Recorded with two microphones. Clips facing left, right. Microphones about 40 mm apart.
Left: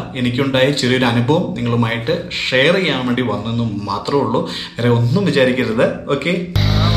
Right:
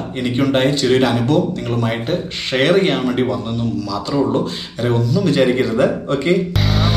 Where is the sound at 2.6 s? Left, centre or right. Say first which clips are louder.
Even; left.